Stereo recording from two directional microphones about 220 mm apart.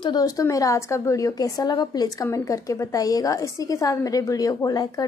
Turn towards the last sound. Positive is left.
turn(degrees=15)  # may be behind; listen again after turning